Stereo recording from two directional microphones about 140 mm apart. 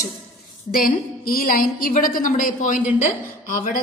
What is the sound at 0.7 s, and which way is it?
A woman's voice, 90° left.